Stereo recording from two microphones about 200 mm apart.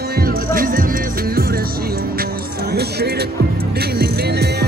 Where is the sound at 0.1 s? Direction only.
45° right (ahead or behind).